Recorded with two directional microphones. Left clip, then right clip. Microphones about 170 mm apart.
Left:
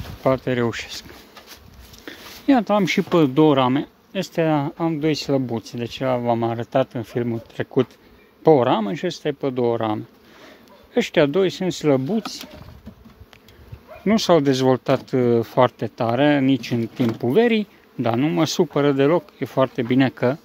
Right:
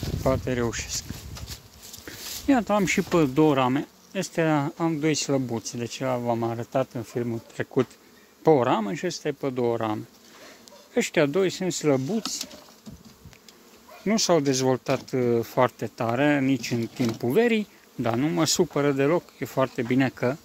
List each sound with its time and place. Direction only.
0.2 s speech: 15° left (ahead or behind)
2.0 s speech: 10° left (ahead or behind)
14.0 s speech: 20° left (ahead or behind)